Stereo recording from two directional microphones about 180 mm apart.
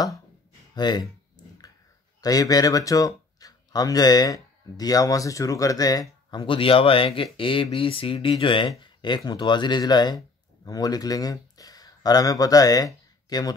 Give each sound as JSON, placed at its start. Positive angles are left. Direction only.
{"t": 0.7, "sound": "speech", "side_deg": 25}
{"t": 2.2, "sound": "speech", "side_deg": 20}